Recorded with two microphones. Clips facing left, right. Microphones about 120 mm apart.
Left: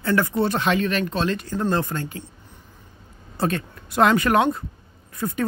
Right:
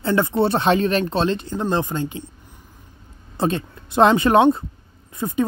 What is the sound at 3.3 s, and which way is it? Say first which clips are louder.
Speech: right 2 dB; 20° right (ahead or behind).